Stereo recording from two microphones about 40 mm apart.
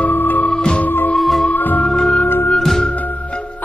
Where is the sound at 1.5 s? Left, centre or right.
Left.